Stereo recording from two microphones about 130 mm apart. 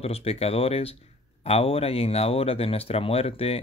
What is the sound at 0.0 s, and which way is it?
Speech, 50° left (ahead or behind).